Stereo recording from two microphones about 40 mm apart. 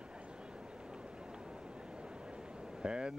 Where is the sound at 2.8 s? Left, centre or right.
Right.